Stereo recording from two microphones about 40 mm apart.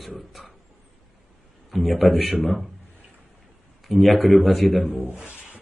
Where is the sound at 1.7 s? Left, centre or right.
Centre.